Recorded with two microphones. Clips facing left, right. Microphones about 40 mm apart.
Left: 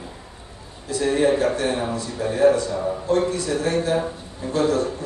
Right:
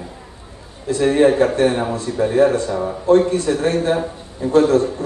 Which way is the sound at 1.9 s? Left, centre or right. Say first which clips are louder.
Right 7 dB; right.